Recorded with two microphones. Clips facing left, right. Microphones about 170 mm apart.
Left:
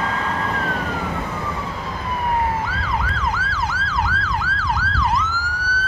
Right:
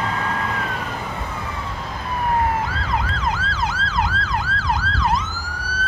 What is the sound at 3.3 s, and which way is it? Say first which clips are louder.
Emergency vehicle: even; 20° right (ahead or behind).